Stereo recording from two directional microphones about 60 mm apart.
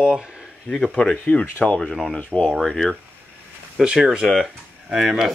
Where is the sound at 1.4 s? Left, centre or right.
Left.